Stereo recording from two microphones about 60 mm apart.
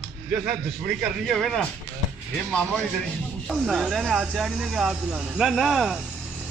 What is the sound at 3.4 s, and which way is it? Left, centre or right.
Speech, centre.